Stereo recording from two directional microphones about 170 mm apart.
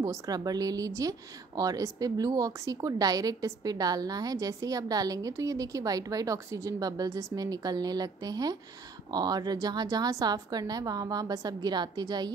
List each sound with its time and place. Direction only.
0.0 s a woman's voice: 20° right (ahead or behind)